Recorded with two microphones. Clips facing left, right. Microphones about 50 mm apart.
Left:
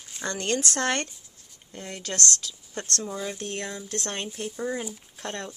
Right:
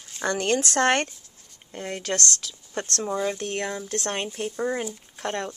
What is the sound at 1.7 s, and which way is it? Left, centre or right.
Speech, right.